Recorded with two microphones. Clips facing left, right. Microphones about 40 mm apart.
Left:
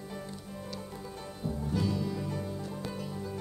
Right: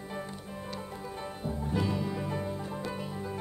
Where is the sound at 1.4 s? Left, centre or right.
Centre.